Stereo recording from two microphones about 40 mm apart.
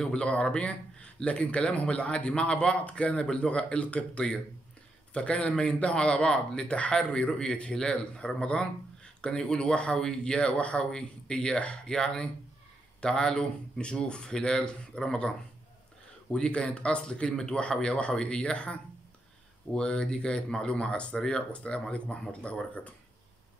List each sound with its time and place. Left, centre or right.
0.2 s speech: left
10.8 s speech: centre
20.7 s speech: left